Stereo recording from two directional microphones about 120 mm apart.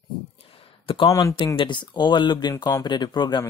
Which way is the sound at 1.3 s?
45° left (ahead or behind).